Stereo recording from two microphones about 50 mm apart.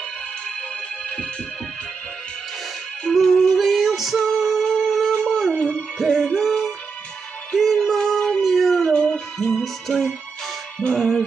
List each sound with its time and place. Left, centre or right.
3.0 s music: centre
4.2 s humming: centre
5.2 s dog: centre
5.7 s music: centre
8.1 s dog: centre
8.9 s music: centre
9.5 s music: centre